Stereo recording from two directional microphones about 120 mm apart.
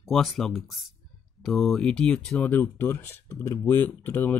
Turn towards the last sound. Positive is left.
turn(degrees=15)  # may be behind; listen again after turning